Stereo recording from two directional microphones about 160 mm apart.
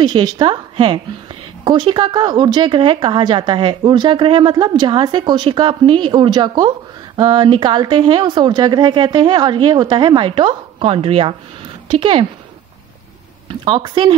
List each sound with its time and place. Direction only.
0.0 s a woman's voice: 25° right (ahead or behind)
13.5 s a woman's voice: 30° right (ahead or behind)